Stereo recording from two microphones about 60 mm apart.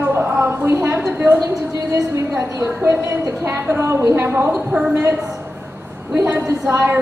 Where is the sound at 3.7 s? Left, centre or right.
Right.